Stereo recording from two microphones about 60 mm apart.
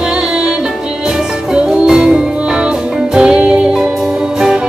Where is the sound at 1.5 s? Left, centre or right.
Centre.